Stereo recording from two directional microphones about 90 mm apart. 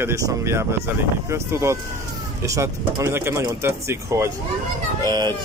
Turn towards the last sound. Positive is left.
turn(degrees=-55)  # may be behind; listen again after turning